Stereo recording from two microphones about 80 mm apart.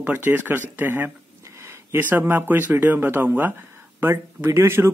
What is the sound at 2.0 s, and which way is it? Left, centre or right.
Speech, right.